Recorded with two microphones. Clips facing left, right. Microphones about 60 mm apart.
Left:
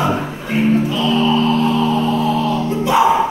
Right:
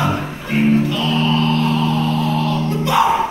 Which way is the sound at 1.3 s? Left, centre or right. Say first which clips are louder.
Left 2 dB; left.